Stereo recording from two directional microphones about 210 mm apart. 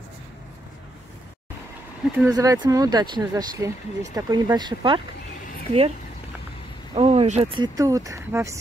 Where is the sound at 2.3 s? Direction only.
15° right (ahead or behind).